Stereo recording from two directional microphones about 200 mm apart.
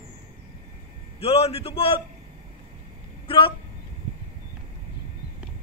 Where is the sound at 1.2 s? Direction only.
30° left (ahead or behind).